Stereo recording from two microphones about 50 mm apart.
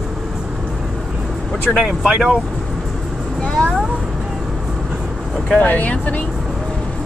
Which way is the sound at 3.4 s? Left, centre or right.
Left.